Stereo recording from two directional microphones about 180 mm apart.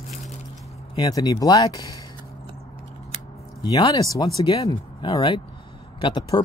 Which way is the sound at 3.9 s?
20° left (ahead or behind).